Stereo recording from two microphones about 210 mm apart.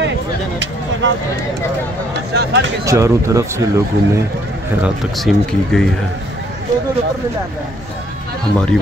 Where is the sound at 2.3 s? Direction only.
55° right (ahead or behind).